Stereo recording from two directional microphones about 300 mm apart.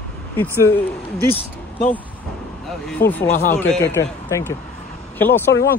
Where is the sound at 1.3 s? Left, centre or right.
Centre.